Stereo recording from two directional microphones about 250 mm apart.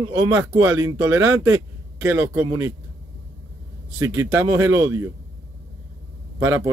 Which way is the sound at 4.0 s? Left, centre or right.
Centre.